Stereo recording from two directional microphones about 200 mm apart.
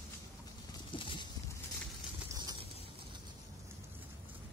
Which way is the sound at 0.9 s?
25° left (ahead or behind).